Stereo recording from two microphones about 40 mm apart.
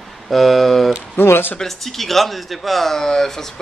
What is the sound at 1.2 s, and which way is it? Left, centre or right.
Speech, left.